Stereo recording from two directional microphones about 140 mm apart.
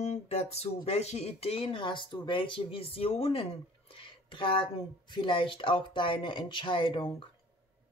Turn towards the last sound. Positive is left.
turn(degrees=40)  # may be behind; listen again after turning